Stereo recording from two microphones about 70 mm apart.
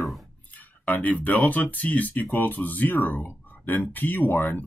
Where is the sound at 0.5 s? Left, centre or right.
Left.